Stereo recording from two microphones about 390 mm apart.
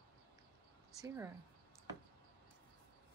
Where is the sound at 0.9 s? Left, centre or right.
Centre.